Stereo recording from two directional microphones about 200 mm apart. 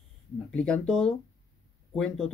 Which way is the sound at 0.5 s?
5° left (ahead or behind).